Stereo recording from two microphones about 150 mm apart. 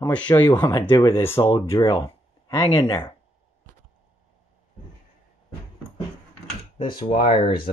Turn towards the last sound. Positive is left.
turn(degrees=35)  # may be behind; listen again after turning